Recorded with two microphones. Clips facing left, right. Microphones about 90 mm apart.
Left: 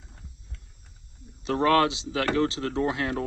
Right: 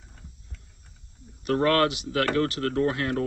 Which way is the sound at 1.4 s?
25° left (ahead or behind).